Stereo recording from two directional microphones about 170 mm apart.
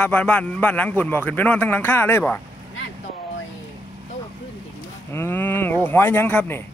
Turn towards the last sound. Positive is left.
turn(degrees=10)  # may be behind; listen again after turning